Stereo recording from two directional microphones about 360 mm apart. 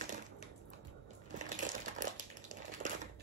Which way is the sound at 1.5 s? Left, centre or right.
Right.